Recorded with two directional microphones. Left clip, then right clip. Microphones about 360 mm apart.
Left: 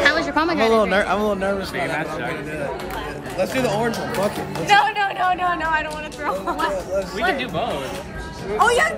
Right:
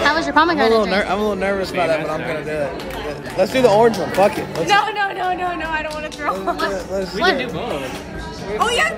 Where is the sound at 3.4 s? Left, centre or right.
Right.